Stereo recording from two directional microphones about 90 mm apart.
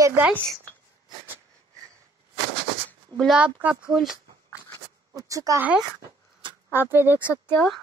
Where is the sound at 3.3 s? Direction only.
10° right (ahead or behind).